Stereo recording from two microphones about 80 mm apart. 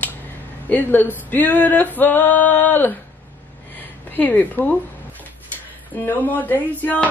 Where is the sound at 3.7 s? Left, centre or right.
Left.